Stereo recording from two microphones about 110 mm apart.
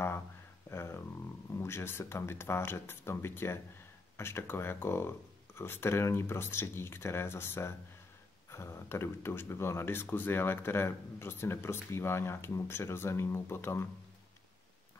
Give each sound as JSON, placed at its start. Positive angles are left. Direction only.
{"t": 0.7, "sound": "speech", "side_deg": 25}